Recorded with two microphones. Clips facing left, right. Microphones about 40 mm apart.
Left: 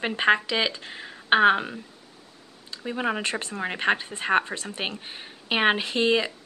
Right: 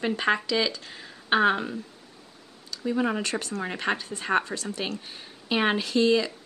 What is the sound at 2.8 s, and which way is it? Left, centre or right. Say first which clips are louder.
Speech: right 1 dB; left.